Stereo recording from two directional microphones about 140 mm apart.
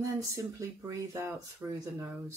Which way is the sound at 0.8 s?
20° right (ahead or behind).